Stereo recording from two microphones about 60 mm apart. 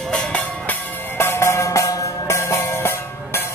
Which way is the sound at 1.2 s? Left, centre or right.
Left.